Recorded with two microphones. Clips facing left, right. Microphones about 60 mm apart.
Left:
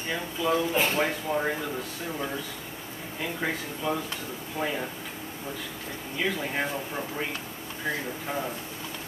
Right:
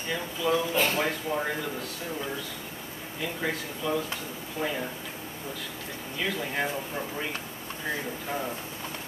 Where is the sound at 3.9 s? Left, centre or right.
Left.